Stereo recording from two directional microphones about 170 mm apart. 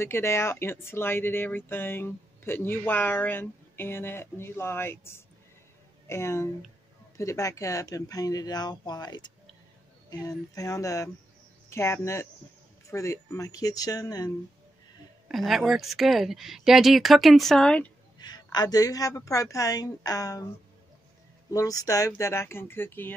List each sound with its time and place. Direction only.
0.0 s a woman's voice: 15° left (ahead or behind)
15.2 s speech: centre (ahead or behind)
18.2 s a woman's voice: 25° left (ahead or behind)
21.5 s a woman's voice: 20° left (ahead or behind)